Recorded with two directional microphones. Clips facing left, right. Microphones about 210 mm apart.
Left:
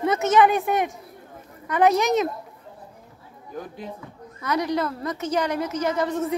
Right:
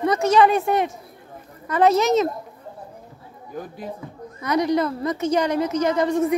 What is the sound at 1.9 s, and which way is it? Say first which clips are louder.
Speech: right 3 dB; 15° left (ahead or behind).